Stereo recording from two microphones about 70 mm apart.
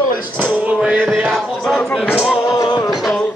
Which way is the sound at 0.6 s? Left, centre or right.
Centre.